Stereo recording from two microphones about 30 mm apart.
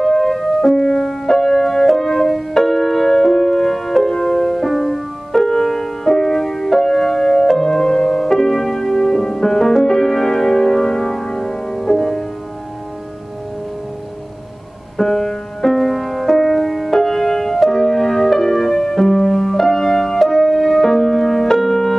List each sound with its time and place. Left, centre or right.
0.0 s music: centre
15.0 s music: centre